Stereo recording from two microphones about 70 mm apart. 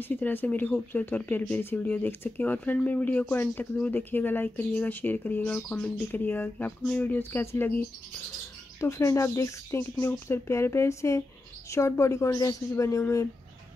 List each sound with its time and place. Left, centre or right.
0.0 s speech: left
8.7 s speech: left